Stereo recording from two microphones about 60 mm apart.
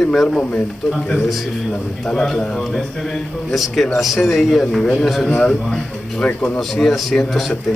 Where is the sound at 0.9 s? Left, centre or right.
Centre.